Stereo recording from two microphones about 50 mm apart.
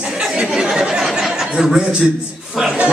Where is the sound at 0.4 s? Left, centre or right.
Centre.